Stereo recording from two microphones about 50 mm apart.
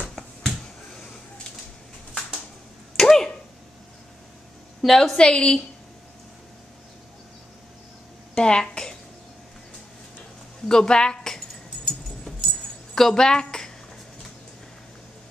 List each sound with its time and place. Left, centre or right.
0.0 s finger snapping: centre
3.0 s a sound: centre
4.8 s a woman's voice: centre
5.1 s a woman's voice: centre
8.4 s speech: centre
10.7 s keys jangling: centre